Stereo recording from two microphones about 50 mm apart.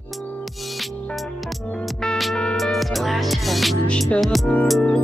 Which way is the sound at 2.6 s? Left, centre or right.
Centre.